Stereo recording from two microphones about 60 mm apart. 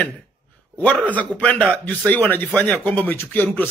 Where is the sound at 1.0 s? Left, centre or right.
Left.